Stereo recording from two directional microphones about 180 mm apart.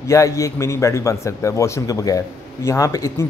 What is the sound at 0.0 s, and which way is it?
A man's voice, 15° left (ahead or behind).